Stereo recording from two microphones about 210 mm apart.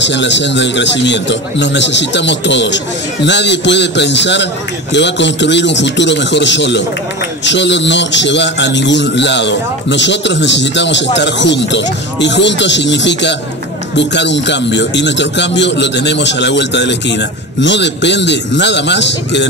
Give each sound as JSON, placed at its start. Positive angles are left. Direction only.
{"t": 0.0, "sound": "a man's voice", "side_deg": 55}